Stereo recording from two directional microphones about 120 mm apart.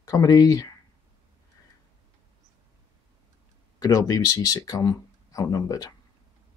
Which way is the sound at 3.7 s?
30° left (ahead or behind).